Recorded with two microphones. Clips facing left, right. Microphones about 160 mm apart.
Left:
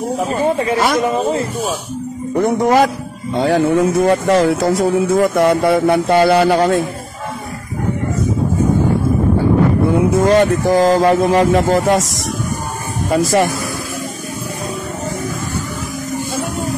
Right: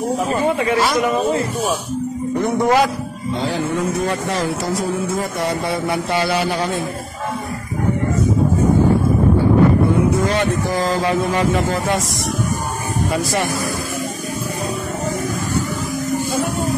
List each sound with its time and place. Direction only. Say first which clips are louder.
0.3 s speech: left 3 dB; 35° left (ahead or behind)
0.7 s speech: left 2 dB; 50° left (ahead or behind)
1.0 s speech: left 1 dB; 30° left (ahead or behind)
2.3 s speech: left 3 dB; 50° left (ahead or behind)
10.2 s speech: left 7 dB; 45° left (ahead or behind)
13.1 s speech: left 9 dB; 45° left (ahead or behind)